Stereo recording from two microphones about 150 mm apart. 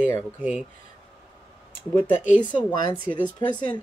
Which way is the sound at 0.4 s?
10° right (ahead or behind).